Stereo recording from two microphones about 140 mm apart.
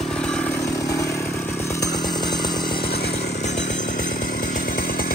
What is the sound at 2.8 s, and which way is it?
Chainsaw, 90° left.